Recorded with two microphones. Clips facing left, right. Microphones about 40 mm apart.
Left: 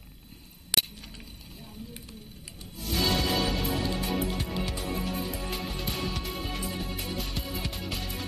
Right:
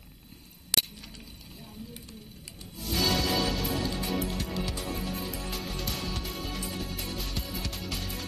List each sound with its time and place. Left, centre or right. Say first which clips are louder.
0.7 s chink: left 1 dB; centre
2.8 s music: even; centre